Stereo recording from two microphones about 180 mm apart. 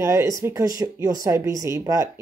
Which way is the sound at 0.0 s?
15° right (ahead or behind).